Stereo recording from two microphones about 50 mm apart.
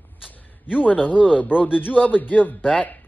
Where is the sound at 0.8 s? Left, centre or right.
Left.